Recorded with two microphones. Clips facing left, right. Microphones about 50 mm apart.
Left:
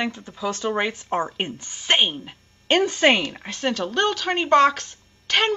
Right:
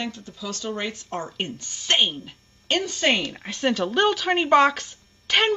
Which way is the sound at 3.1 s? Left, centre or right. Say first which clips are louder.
Left 2 dB; centre.